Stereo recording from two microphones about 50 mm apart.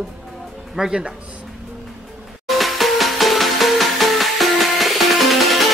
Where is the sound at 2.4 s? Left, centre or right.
Centre.